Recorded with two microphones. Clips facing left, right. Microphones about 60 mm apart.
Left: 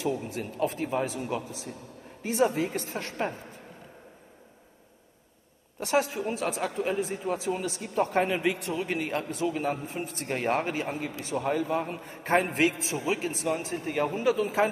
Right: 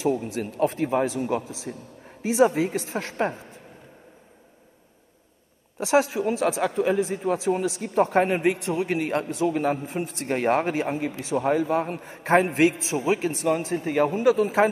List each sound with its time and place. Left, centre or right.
0.0 s a man's voice: right
1.4 s speech: left
2.4 s a man's voice: right
2.9 s a woman's voice: right
5.8 s a man's voice: right
12.0 s a man's voice: right